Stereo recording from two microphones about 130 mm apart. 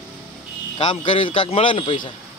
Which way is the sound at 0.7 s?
40° left (ahead or behind).